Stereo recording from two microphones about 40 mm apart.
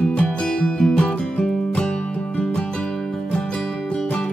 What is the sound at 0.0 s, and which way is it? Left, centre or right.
Music, left.